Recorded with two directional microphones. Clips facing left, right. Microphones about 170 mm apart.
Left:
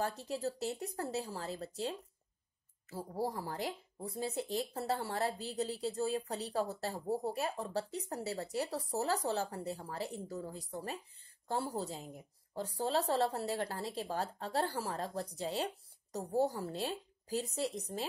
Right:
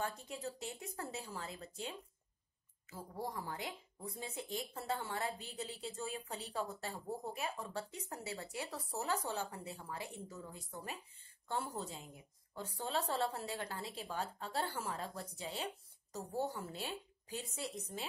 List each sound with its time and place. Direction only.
0.3 s a woman's voice: 35° left (ahead or behind)